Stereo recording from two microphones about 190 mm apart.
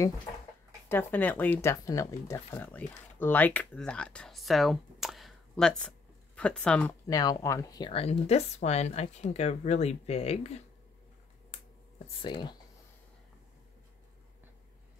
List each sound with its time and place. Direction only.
0.8 s speech: 10° left (ahead or behind)
7.1 s speech: 20° left (ahead or behind)
12.2 s speech: 25° left (ahead or behind)